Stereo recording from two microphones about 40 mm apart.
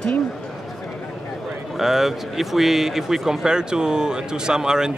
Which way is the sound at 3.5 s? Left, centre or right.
Centre.